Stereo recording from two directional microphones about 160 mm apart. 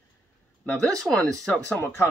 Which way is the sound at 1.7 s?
15° left (ahead or behind).